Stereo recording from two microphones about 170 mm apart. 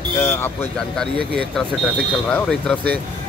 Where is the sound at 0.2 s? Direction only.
10° left (ahead or behind).